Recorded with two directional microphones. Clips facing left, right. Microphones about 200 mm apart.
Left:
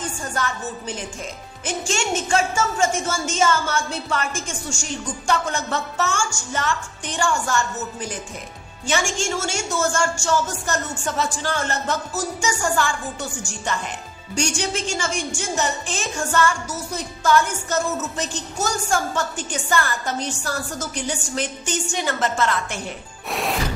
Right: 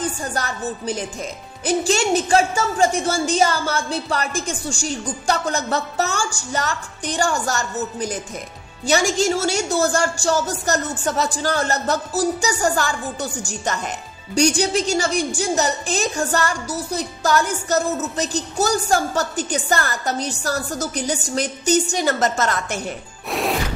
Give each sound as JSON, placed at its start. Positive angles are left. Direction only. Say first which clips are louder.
{"t": 0.0, "sound": "a woman's voice", "louder": "right 2 dB", "side_deg": -35}
{"t": 23.3, "sound": "music", "louder": "right 3 dB", "side_deg": 0}